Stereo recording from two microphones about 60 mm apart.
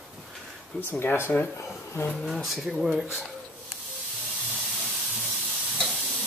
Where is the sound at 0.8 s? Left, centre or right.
Left.